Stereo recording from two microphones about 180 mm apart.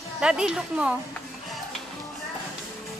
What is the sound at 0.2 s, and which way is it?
Speech, 5° right (ahead or behind).